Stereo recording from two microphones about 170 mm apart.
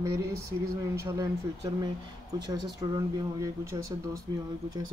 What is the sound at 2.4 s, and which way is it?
Speech, 25° right (ahead or behind).